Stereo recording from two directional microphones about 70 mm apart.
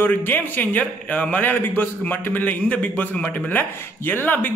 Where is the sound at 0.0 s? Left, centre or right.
Left.